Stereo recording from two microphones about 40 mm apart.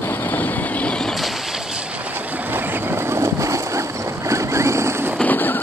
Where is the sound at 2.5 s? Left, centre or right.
Right.